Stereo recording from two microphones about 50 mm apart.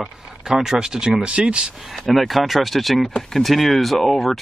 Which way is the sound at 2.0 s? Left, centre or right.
Centre.